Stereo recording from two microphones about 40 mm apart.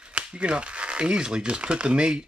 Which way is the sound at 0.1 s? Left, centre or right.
Right.